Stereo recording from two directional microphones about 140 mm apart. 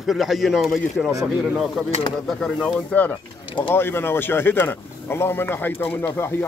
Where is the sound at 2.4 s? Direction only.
5° left (ahead or behind).